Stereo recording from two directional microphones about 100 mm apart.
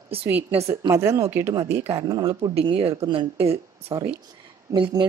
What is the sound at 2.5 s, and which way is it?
Speech, 70° right (ahead or behind).